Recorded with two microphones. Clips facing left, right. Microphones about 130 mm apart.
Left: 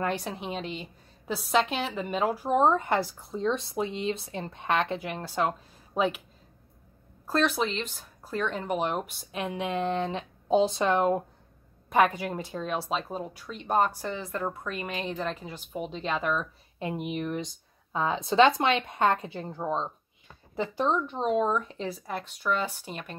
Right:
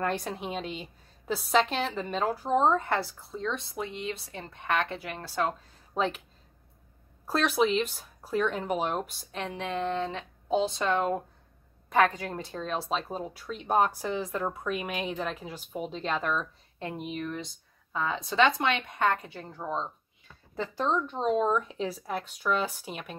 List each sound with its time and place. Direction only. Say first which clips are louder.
0.0 s a woman's voice: even; centre (ahead or behind); by 5.5 s 15° left (ahead or behind)
5.5 s speech: left 1 dB; 5° left (ahead or behind)
7.2 s speech: right 1 dB; 5° right (ahead or behind)
9.3 s speech: left 3 dB; 10° left (ahead or behind)
20.5 s speech: left 2 dB; 15° left (ahead or behind)